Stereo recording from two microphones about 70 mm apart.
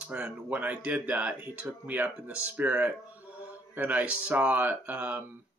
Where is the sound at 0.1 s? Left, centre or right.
Centre.